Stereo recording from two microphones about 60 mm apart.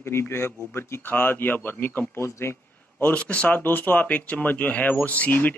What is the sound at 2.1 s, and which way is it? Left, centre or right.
Speech, left.